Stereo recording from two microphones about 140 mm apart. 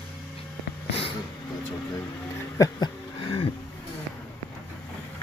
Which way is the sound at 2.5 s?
30° left (ahead or behind).